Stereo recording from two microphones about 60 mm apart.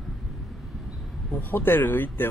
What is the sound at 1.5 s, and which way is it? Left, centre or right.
Speech, left.